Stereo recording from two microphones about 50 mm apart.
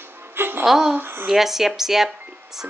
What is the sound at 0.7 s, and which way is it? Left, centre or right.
Speech, centre.